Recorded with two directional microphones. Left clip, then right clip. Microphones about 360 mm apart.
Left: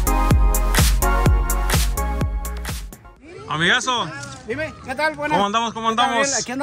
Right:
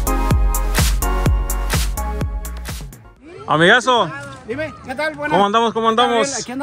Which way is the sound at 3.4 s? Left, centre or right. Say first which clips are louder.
Right 6 dB; centre.